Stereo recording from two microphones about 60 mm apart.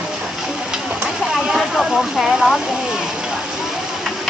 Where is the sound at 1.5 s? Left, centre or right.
Centre.